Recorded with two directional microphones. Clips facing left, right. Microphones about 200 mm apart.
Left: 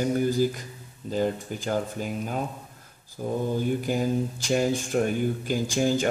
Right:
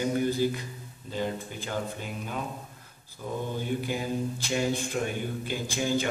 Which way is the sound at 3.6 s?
45° left (ahead or behind).